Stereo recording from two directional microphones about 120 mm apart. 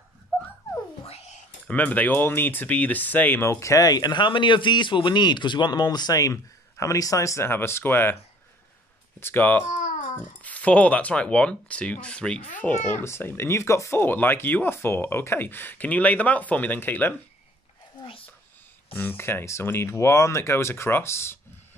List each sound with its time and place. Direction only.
0.3 s dog: 5° left (ahead or behind)
1.0 s whispering: 65° left (ahead or behind)
1.7 s speech: 10° left (ahead or behind)
9.2 s speech: 15° left (ahead or behind)
9.7 s cat: 85° left
10.4 s speech: 10° left (ahead or behind)
12.6 s speech: 20° left (ahead or behind)
18.9 s speech: 15° left (ahead or behind)